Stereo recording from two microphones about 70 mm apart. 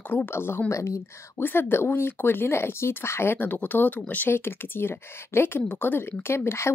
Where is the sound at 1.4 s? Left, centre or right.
Left.